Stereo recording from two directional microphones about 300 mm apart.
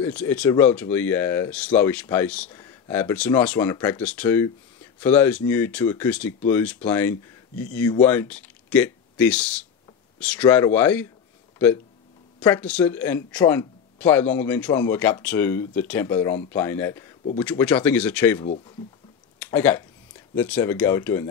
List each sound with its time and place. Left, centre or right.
0.0 s speech: centre
11.5 s a sound: centre
12.4 s speech: centre